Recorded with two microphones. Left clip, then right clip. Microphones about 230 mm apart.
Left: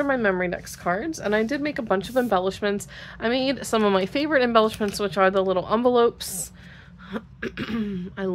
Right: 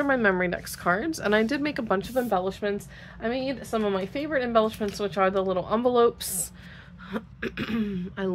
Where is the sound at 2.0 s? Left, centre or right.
Centre.